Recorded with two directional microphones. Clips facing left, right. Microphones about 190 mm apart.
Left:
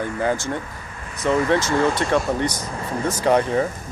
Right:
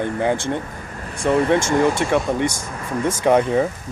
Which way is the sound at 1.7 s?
10° right (ahead or behind).